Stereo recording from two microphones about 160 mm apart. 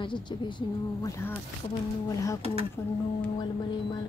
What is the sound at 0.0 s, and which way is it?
A woman's voice, 30° left (ahead or behind).